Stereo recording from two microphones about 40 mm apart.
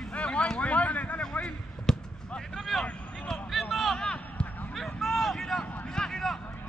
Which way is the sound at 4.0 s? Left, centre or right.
Centre.